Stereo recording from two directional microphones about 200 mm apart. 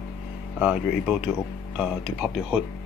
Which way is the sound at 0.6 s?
5° right (ahead or behind).